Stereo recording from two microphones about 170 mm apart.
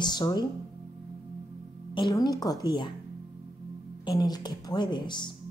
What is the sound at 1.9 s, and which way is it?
Speech, 25° left (ahead or behind).